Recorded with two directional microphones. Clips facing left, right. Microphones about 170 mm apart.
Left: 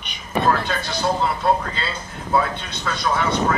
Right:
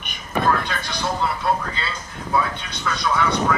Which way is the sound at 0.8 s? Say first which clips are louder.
Left 4 dB; 25° left (ahead or behind).